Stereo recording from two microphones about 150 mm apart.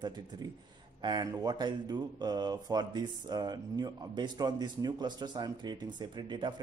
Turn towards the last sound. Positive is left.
turn(degrees=-30)  # may be behind; listen again after turning